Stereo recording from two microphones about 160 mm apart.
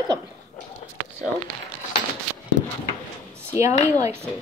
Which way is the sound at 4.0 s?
15° right (ahead or behind).